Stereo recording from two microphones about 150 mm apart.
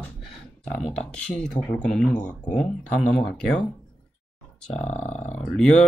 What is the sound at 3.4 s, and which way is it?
Speech, 5° left (ahead or behind).